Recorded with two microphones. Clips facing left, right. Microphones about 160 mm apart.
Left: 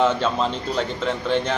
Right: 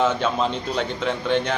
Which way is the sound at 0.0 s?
5° right (ahead or behind).